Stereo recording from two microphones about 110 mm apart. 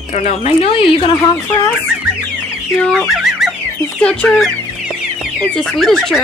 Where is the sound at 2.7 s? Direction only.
Centre (ahead or behind).